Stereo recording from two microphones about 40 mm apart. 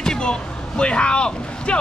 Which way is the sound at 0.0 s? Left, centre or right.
Centre.